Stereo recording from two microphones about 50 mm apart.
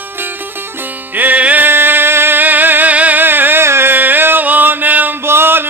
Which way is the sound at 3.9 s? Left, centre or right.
Right.